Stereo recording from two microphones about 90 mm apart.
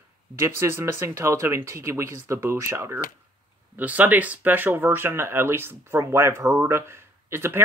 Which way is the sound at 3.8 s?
15° right (ahead or behind).